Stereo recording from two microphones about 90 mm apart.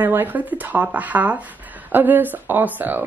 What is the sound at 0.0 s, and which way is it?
Speech, 20° right (ahead or behind).